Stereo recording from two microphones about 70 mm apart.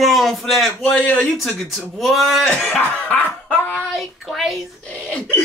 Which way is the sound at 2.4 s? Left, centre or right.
Left.